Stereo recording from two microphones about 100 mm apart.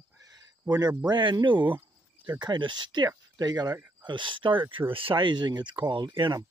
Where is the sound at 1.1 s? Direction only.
50° right (ahead or behind).